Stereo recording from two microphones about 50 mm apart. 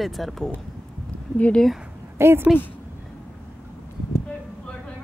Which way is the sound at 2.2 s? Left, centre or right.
Right.